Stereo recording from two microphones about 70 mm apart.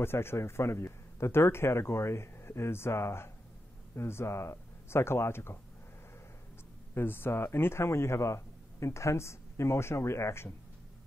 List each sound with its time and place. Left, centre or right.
0.0 s a man's voice: left
6.9 s a man's voice: left